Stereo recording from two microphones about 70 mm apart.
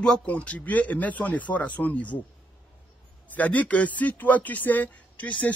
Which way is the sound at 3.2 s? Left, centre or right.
Left.